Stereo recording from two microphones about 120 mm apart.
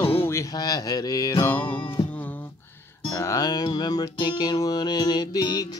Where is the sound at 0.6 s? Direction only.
35° left (ahead or behind).